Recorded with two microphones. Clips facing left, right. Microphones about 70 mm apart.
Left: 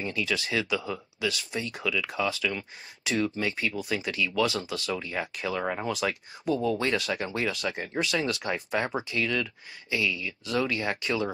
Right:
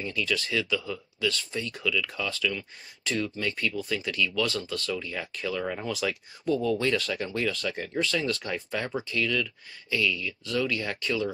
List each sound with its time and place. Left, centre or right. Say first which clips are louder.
0.0 s speech: even; left
5.9 s speech: left 1 dB; centre